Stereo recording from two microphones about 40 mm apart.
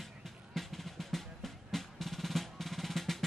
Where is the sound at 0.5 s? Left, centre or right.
Centre.